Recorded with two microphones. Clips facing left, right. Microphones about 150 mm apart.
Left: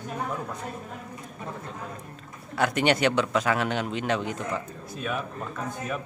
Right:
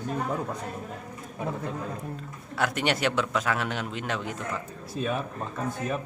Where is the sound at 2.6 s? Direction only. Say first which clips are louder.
Left 3 dB; centre (ahead or behind).